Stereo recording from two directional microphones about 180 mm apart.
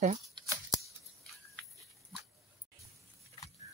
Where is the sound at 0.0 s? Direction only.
40° right (ahead or behind).